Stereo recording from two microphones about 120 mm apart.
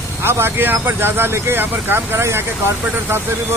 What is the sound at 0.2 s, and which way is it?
Speech, 20° right (ahead or behind).